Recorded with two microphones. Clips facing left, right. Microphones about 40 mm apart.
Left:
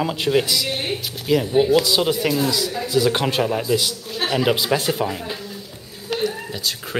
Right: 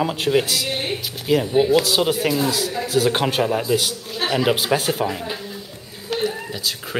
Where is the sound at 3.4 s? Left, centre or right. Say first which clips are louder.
Even; centre.